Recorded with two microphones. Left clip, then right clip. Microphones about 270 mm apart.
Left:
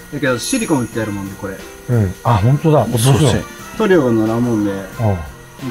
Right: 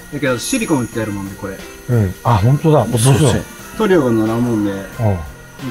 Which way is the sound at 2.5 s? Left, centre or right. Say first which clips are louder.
Right 1 dB; right.